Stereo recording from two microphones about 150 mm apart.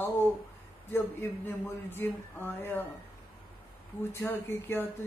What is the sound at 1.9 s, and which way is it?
Speech, 15° left (ahead or behind).